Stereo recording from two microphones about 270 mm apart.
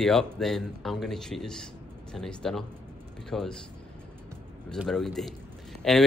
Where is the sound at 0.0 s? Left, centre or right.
Centre.